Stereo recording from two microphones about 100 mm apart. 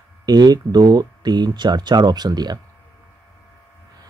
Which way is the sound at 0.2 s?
40° right (ahead or behind).